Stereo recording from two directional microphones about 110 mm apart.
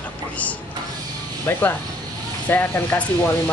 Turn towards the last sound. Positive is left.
turn(degrees=20)  # may be behind; listen again after turning